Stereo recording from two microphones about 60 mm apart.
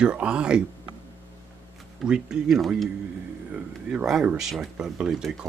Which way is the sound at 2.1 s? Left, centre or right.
Centre.